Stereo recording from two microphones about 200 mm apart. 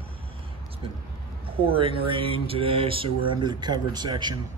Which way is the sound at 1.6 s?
25° right (ahead or behind).